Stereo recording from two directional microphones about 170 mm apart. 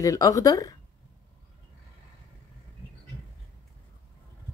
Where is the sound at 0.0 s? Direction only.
20° left (ahead or behind).